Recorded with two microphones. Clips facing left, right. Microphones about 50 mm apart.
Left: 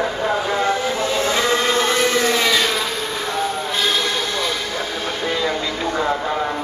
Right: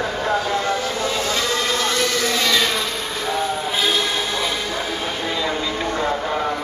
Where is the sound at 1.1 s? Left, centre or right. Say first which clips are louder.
Left 5 dB; left.